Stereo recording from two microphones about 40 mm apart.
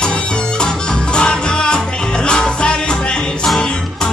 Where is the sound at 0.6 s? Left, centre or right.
Left.